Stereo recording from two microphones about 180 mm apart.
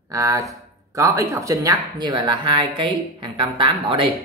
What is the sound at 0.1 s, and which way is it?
Speech, 20° right (ahead or behind).